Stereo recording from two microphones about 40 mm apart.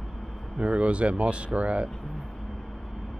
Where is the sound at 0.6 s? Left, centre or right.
Right.